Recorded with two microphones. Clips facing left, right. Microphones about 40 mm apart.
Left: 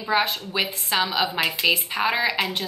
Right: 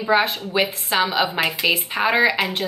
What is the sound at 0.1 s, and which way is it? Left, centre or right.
A woman's voice, centre.